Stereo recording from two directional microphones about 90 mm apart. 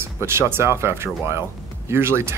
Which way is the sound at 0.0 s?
30° right (ahead or behind).